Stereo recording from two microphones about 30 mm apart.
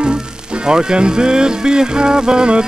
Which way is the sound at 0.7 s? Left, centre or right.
Right.